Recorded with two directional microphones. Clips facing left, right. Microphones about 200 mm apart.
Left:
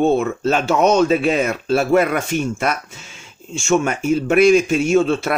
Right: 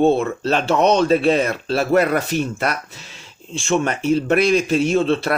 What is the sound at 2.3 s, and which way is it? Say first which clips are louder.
Speech: even; 35° right (ahead or behind).